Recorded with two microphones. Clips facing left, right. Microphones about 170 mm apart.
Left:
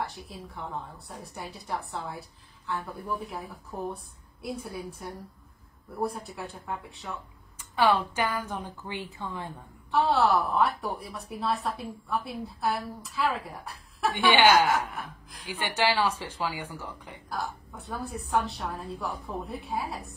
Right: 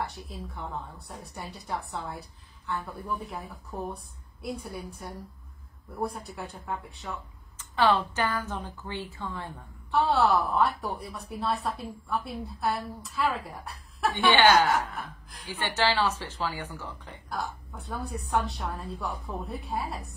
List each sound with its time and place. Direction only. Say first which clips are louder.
0.0 s a woman's voice: even; centre (ahead or behind)
7.5 s a woman's voice: even; 10° left (ahead or behind)
9.8 s a woman's voice: even; centre (ahead or behind)
14.3 s a woman's voice: even; 15° left (ahead or behind)
17.3 s a woman's voice: even; centre (ahead or behind)